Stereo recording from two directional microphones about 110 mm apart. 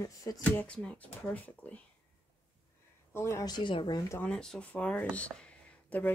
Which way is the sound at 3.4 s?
45° left (ahead or behind).